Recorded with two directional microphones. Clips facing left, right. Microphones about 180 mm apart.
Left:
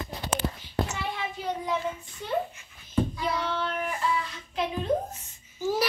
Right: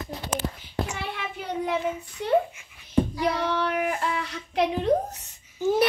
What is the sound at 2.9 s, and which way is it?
Child singing, 70° right (ahead or behind).